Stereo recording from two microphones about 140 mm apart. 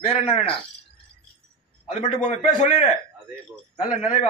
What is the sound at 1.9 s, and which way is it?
Speech, 60° left (ahead or behind).